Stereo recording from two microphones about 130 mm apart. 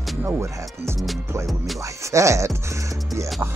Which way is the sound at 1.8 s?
25° right (ahead or behind).